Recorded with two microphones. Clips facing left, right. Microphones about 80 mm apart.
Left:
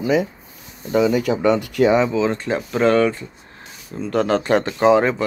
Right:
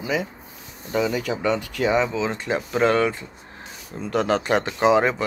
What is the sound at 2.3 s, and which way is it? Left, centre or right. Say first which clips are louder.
Speech: left 2 dB; centre.